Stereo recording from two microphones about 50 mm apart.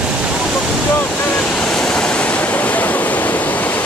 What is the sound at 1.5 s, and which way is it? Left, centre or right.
Waves, centre.